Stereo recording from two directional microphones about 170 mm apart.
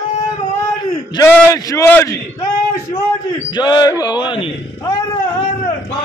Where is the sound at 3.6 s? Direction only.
25° left (ahead or behind).